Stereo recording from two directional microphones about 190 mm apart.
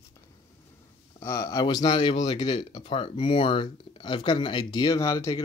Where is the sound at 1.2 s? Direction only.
15° left (ahead or behind).